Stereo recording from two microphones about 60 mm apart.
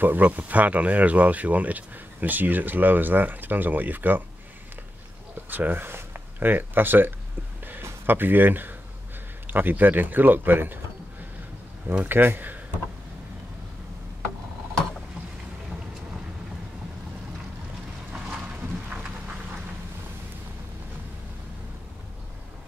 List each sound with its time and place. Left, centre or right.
0.0 s speech: right
5.5 s speech: right
12.0 s speech: right